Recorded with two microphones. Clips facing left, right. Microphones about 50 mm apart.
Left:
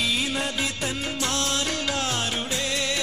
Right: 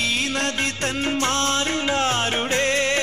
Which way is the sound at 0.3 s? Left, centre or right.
Right.